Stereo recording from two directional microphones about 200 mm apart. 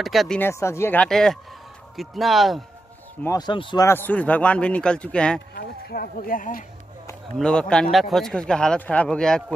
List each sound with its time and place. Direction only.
0.0 s speech: centre (ahead or behind)
0.4 s a man's voice: 15° left (ahead or behind)
3.3 s speech: 20° left (ahead or behind)
3.8 s a man's voice: 10° left (ahead or behind)
5.5 s speech: 50° left (ahead or behind)
7.3 s speech: 5° left (ahead or behind)